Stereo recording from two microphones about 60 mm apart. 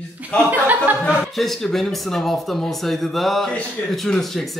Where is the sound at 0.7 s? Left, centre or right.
Right.